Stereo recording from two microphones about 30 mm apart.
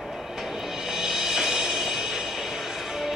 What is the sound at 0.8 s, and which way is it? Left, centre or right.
Music, centre.